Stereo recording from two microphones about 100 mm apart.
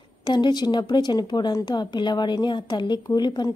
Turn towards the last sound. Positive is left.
turn(degrees=45)  # may be behind; listen again after turning